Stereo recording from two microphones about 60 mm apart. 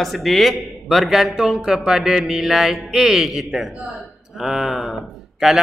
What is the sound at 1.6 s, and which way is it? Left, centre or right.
Mantra, centre.